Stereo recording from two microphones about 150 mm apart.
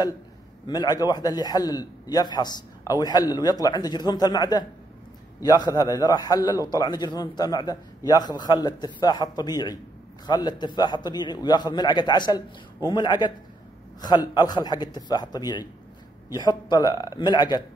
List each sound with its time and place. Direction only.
0.7 s a man's voice: 25° left (ahead or behind)